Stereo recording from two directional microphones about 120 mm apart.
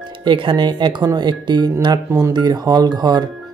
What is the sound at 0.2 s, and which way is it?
Speech, 45° right (ahead or behind).